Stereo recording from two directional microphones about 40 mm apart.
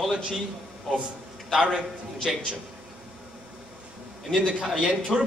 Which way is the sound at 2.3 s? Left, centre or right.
Centre.